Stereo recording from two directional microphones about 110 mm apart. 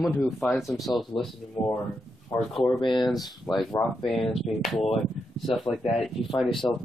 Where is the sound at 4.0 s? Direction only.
5° left (ahead or behind).